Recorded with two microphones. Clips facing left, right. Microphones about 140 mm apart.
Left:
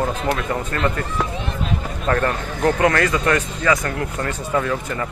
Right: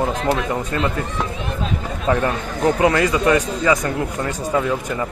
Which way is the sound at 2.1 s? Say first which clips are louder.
Right 1 dB; 15° right (ahead or behind).